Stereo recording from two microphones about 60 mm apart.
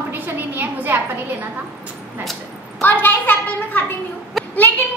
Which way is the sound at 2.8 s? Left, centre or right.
Left.